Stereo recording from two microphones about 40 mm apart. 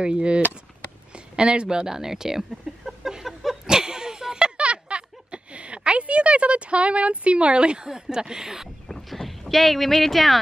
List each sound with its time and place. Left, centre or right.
0.0 s speech: right
1.9 s speech: centre
2.8 s chicken: centre
3.6 s a sound: centre
4.6 s a sound: right; by 8.6 s centre
8.8 s boat: centre